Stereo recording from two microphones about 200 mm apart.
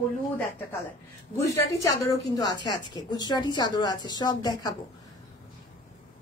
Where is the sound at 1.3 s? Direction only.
15° left (ahead or behind).